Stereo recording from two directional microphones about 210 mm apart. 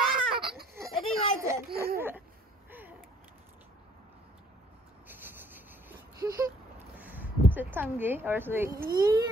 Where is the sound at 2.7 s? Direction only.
10° right (ahead or behind).